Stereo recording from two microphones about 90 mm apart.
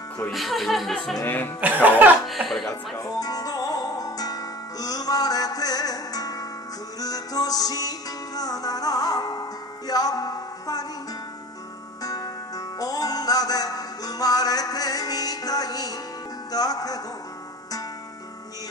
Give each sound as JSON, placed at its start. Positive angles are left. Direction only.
{"t": 0.3, "sound": "speech", "side_deg": 0}
{"t": 1.2, "sound": "speech", "side_deg": 20}
{"t": 1.6, "sound": "speech", "side_deg": -20}
{"t": 2.2, "sound": "speech", "side_deg": 0}
{"t": 3.0, "sound": "music", "side_deg": 45}
{"t": 12.0, "sound": "music", "side_deg": 45}